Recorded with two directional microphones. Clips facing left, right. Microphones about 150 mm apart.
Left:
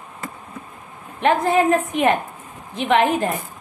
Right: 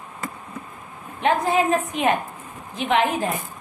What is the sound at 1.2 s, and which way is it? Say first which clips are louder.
A woman's voice: left 3 dB; 60° left (ahead or behind).